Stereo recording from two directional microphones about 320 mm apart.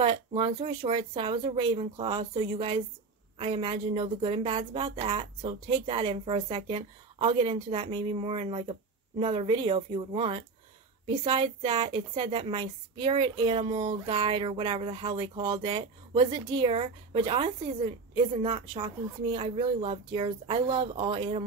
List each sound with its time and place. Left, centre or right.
0.0 s a woman's voice: centre